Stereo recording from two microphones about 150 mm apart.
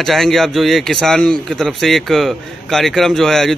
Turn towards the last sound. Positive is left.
turn(degrees=5)  # may be behind; listen again after turning